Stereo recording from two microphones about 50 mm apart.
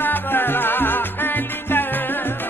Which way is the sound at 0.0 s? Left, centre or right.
Left.